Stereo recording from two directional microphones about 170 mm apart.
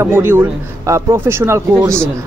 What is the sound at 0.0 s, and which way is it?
Speech, 15° right (ahead or behind).